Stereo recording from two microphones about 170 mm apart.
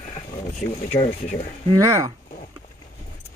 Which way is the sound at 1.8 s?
20° right (ahead or behind).